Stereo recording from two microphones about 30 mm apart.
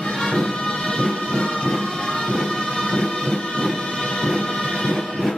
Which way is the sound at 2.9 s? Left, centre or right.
Left.